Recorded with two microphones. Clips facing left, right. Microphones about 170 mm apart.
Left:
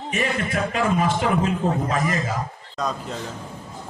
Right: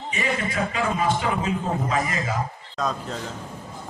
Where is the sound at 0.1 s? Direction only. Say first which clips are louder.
Left 2 dB; 50° left (ahead or behind).